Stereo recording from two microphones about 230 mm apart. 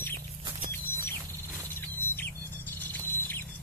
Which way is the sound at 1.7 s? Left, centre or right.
Centre.